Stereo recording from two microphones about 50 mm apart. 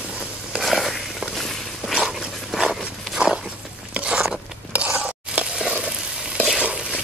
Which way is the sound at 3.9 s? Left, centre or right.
Centre.